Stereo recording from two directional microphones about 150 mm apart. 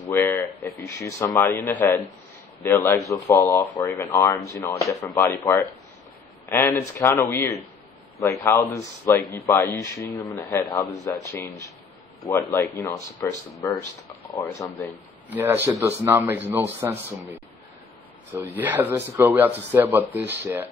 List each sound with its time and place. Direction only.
0.1 s speech: 15° left (ahead or behind)
4.6 s speech: 25° left (ahead or behind)
6.5 s speech: 15° left (ahead or behind)
15.2 s speech: 15° right (ahead or behind)
18.3 s speech: 10° right (ahead or behind)